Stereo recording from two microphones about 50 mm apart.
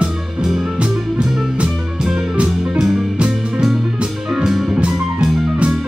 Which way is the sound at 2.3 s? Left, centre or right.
Right.